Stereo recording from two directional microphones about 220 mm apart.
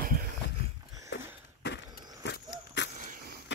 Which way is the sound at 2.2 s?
50° left (ahead or behind).